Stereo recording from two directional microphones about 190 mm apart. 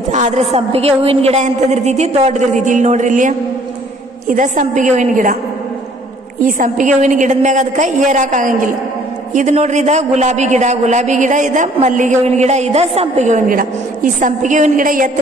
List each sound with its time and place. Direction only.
0.1 s a man's voice: 35° right (ahead or behind)
6.4 s a man's voice: 40° right (ahead or behind)